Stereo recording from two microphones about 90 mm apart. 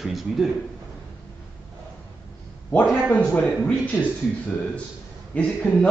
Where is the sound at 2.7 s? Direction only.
15° left (ahead or behind).